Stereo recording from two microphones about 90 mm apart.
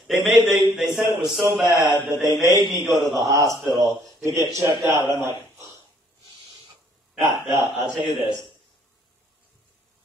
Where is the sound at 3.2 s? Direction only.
40° right (ahead or behind).